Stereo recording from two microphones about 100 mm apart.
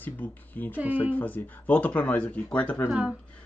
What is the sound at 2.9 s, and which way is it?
Speech, 10° right (ahead or behind).